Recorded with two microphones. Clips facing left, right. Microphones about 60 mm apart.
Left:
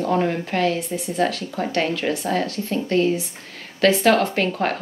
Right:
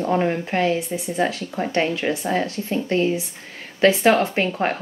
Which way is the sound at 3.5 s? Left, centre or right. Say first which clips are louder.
Right 1 dB; centre.